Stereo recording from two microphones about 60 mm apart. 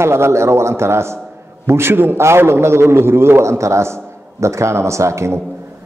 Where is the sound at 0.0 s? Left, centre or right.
Right.